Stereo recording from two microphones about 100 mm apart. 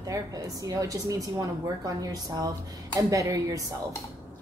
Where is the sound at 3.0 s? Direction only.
35° right (ahead or behind).